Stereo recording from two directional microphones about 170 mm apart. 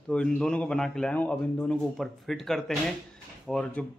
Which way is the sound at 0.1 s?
5° left (ahead or behind).